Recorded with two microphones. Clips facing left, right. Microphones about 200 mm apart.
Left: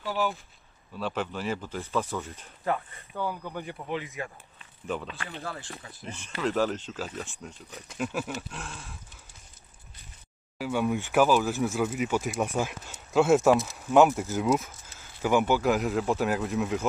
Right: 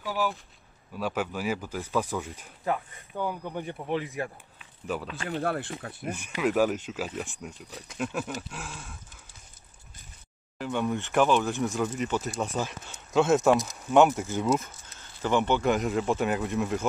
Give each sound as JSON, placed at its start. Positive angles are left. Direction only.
{"t": 0.0, "sound": "speech", "side_deg": -5}
{"t": 3.9, "sound": "speech", "side_deg": -35}
{"t": 4.2, "sound": "speech", "side_deg": -5}
{"t": 5.4, "sound": "speech", "side_deg": -60}
{"t": 6.1, "sound": "speech", "side_deg": -15}
{"t": 7.9, "sound": "speech", "side_deg": 0}
{"t": 10.6, "sound": "speech", "side_deg": 5}